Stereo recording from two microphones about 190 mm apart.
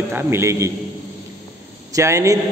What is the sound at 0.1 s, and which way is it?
Speech, 10° right (ahead or behind).